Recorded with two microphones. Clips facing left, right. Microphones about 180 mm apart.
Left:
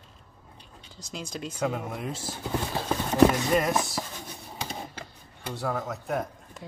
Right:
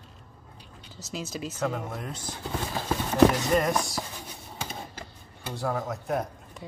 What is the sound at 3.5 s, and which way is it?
Speech, 5° left (ahead or behind).